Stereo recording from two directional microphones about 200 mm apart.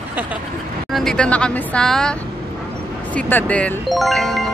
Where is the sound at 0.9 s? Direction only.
5° left (ahead or behind).